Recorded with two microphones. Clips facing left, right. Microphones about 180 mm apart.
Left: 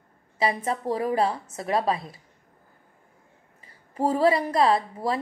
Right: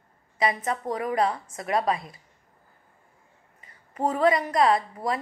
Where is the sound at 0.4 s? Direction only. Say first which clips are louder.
Left 1 dB; 30° left (ahead or behind).